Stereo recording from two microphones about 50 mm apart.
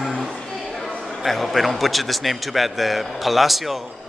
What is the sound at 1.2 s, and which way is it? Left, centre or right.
Speech, centre.